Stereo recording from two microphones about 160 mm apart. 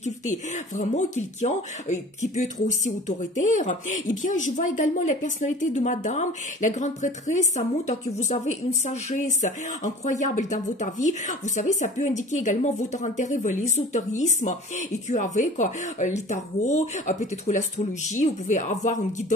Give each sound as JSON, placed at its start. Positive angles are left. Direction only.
{"t": 0.0, "sound": "speech", "side_deg": 50}